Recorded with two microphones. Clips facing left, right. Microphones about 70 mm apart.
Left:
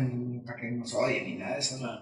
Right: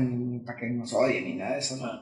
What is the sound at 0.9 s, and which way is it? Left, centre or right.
Speech, right.